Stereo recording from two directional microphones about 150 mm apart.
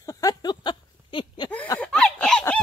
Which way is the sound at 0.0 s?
25° left (ahead or behind).